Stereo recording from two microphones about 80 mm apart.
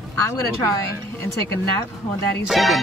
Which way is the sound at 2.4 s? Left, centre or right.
Centre.